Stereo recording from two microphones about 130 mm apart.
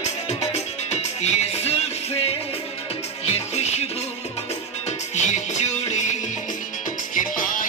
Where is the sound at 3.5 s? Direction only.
55° left (ahead or behind).